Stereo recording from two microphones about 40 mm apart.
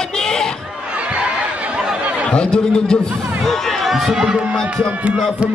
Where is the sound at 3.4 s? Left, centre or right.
Centre.